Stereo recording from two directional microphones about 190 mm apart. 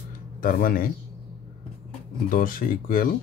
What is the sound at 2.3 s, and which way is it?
Speech, 45° left (ahead or behind).